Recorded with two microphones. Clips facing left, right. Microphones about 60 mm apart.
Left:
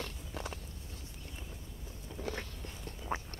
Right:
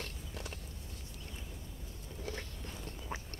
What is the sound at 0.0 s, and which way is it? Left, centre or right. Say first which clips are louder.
Biting: left 3 dB; left.